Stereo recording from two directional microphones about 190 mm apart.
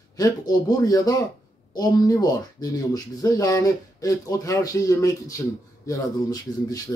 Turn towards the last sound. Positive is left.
turn(degrees=20)  # may be behind; listen again after turning